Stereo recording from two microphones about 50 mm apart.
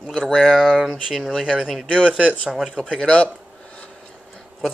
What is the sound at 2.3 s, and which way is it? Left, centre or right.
Speech, centre.